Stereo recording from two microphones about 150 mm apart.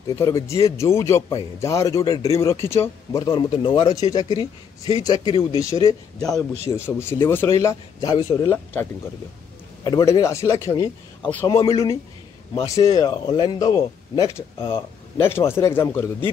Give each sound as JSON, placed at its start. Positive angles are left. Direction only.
{"t": 0.1, "sound": "a man's voice", "side_deg": 20}
{"t": 9.8, "sound": "a man's voice", "side_deg": 25}